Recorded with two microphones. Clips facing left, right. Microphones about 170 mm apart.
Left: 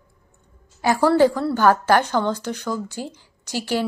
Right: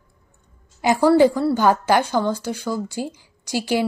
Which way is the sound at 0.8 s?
15° right (ahead or behind).